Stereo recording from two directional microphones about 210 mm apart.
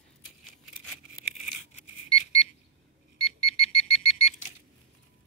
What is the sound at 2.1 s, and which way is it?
Alarm clock, 25° left (ahead or behind).